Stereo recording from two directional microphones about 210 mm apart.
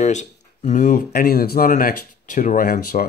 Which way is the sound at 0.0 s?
35° left (ahead or behind).